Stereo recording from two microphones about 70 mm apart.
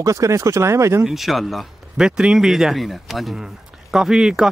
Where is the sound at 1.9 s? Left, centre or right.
Centre.